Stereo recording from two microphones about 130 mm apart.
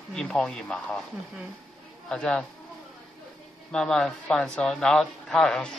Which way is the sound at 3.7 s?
5° left (ahead or behind).